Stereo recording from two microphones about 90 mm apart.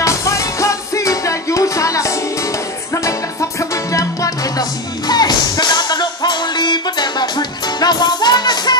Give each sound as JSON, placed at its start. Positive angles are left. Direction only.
{"t": 0.0, "sound": "music", "side_deg": 35}